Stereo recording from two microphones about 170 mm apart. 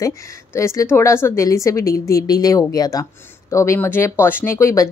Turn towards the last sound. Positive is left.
turn(degrees=15)  # may be behind; listen again after turning